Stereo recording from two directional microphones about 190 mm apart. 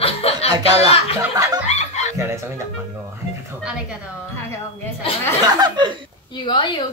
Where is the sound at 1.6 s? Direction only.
35° left (ahead or behind).